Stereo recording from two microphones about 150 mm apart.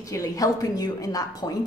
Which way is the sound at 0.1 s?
20° left (ahead or behind).